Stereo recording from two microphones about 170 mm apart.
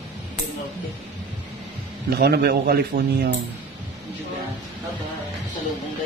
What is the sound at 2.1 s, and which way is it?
Speech, 70° right (ahead or behind).